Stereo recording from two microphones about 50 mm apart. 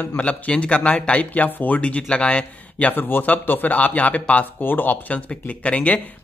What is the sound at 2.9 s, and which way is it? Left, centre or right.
Speech, left.